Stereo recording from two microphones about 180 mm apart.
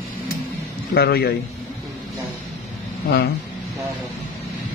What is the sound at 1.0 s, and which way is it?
Speech, 60° left (ahead or behind).